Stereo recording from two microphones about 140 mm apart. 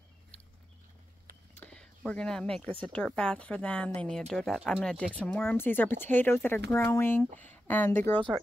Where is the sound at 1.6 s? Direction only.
5° left (ahead or behind).